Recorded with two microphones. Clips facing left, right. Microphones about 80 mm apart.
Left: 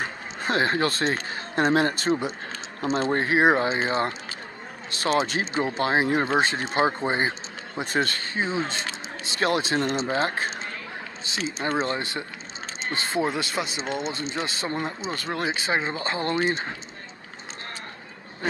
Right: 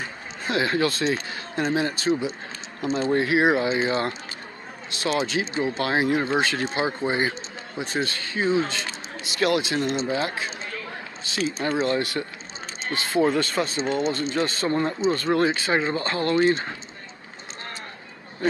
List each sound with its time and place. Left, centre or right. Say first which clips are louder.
0.0 s speech: left 2 dB; left
3.1 s speech: right 1 dB; left
4.9 s speech: left 1 dB; left
11.2 s speech: right 3 dB; left
13.2 s speech: right 6 dB; centre